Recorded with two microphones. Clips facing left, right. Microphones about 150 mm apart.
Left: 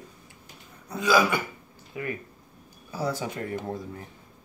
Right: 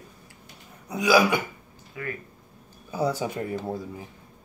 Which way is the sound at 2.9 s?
15° right (ahead or behind).